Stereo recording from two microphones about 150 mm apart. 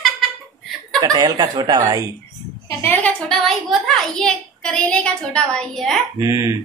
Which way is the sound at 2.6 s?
15° left (ahead or behind).